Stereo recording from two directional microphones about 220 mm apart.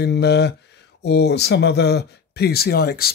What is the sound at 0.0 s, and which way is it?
Speech, 50° left (ahead or behind).